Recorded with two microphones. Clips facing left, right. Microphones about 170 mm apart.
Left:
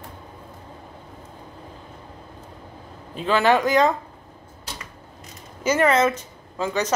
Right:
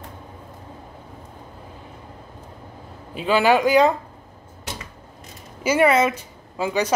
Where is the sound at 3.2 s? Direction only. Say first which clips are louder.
Right 1 dB; 10° right (ahead or behind).